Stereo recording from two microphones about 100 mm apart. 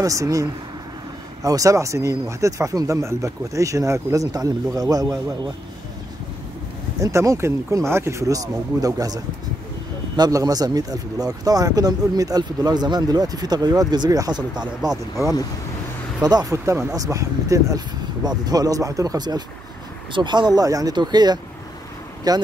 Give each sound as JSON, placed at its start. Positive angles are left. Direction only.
{"t": 0.0, "sound": "speech", "side_deg": -35}
{"t": 7.0, "sound": "speech", "side_deg": -30}
{"t": 16.2, "sound": "speech", "side_deg": -40}
{"t": 16.5, "sound": "speech", "side_deg": -25}